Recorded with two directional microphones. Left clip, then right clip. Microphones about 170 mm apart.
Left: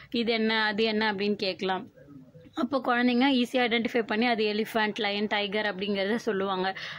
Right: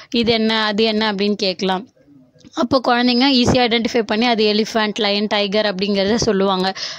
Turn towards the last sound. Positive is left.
turn(degrees=-50)  # may be behind; listen again after turning